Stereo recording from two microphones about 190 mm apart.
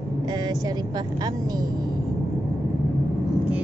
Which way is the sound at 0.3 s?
20° right (ahead or behind).